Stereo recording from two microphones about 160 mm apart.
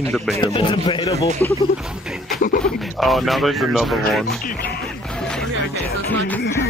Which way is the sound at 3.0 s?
Centre (ahead or behind).